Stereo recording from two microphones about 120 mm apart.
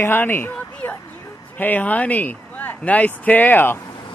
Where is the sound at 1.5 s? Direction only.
15° left (ahead or behind).